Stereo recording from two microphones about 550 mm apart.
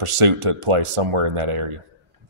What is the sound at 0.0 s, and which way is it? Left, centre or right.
Speech, right.